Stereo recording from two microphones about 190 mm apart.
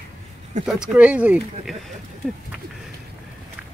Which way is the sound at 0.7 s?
5° right (ahead or behind).